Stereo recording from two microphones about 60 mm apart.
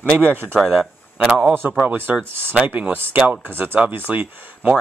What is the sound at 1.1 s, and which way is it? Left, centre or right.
Speech, right.